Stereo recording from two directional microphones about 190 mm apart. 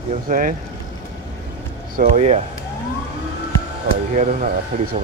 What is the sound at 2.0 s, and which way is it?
Speech, 40° right (ahead or behind).